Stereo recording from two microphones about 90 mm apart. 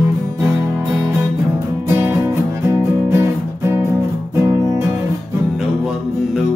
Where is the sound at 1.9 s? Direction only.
25° right (ahead or behind).